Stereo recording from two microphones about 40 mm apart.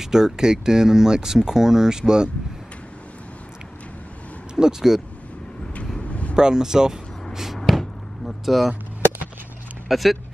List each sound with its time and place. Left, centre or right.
0.0 s speech: centre
4.6 s speech: centre
5.9 s vehicle: left
6.3 s speech: centre
7.7 s a sound: centre
8.3 s vehicle: centre
9.8 s speech: centre